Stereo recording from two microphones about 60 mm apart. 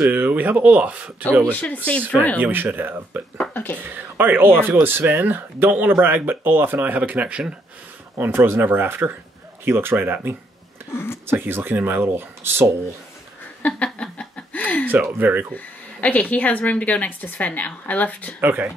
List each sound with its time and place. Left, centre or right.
0.0 s speech: right
1.5 s a woman's voice: left
2.4 s speech: right
3.6 s speech: left
3.9 s speech: right
8.4 s speech: right
10.9 s speech: left
11.2 s speech: right
13.6 s snicker: left
15.1 s speech: right
15.5 s a woman's voice: left
18.4 s speech: right